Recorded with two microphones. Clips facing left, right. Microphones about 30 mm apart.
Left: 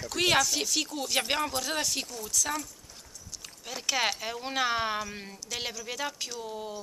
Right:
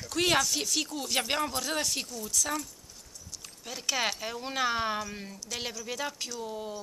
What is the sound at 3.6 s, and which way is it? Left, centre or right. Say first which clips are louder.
Speech: left 2 dB; centre.